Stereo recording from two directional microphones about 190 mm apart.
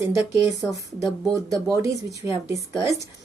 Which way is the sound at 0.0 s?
15° right (ahead or behind).